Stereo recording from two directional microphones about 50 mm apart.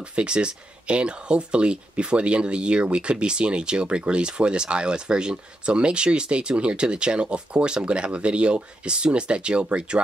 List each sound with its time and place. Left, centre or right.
0.1 s speech: right